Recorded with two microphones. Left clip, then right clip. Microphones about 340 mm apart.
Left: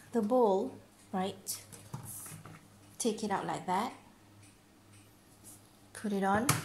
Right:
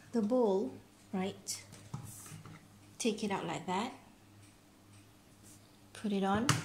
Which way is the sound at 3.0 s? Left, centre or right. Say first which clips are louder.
Left 2 dB; centre.